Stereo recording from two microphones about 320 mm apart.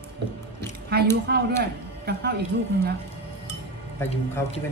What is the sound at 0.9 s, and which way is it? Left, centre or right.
A woman's voice, right.